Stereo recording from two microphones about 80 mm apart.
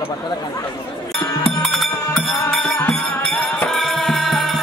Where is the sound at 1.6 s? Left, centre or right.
Centre.